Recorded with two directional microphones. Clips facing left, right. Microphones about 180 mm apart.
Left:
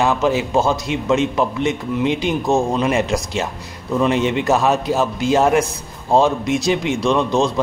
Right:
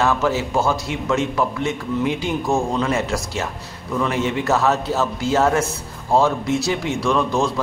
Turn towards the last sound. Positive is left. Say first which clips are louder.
# left 3 dB
turn(degrees=20)  # may be behind; listen again after turning